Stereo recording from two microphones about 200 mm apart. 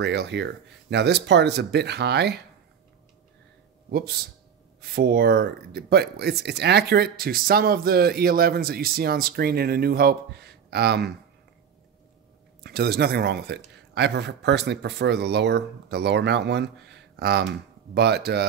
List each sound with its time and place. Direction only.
0.0 s speech: 60° right (ahead or behind)
3.9 s speech: 50° right (ahead or behind)
12.6 s speech: 55° right (ahead or behind)